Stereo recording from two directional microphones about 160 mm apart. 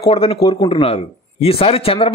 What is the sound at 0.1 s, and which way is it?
A man's voice, 40° left (ahead or behind).